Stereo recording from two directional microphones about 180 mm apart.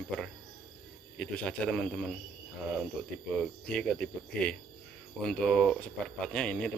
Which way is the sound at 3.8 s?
5° left (ahead or behind).